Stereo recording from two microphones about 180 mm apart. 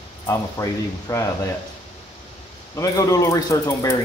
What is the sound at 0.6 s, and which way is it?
Speech, 15° left (ahead or behind).